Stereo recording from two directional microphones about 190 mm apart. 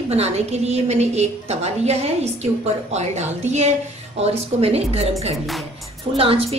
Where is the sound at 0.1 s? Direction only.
35° right (ahead or behind).